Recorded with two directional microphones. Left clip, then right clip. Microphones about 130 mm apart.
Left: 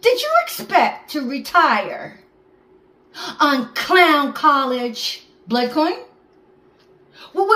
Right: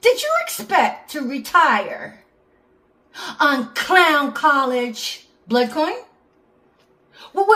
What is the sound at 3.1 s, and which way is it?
A woman's voice, 30° right (ahead or behind).